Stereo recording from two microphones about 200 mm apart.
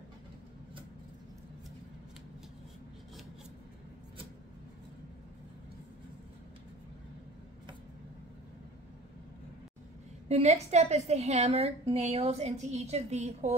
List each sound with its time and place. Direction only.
10.2 s a woman's voice: 35° right (ahead or behind)